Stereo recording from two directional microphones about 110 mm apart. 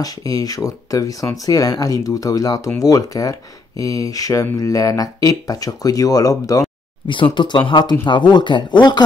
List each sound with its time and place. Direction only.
0.0 s speech: 35° left (ahead or behind)
7.3 s speech: 45° left (ahead or behind)